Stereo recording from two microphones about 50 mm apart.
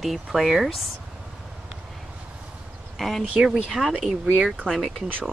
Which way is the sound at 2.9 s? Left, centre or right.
Centre.